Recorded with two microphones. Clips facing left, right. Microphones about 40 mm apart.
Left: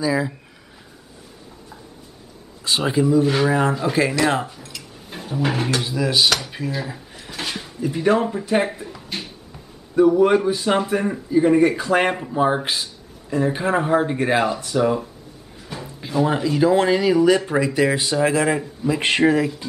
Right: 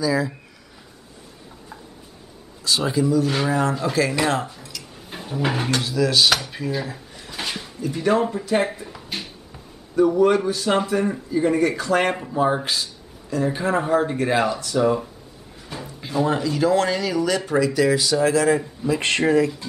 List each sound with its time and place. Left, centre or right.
0.0 s speech: left
2.6 s speech: left
3.3 s speech: centre
3.8 s speech: left
4.5 s speech: centre
5.1 s a sound: centre
5.9 s speech: centre
6.3 s speech: centre
7.1 s drawer open or close: centre
7.8 s speech: centre
9.9 s speech: centre
15.7 s a sound: centre
16.3 s speech: centre